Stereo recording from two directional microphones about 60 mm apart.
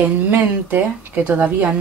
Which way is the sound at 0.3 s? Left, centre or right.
Right.